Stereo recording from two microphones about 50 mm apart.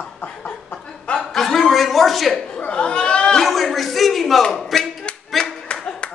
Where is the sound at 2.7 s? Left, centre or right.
Left.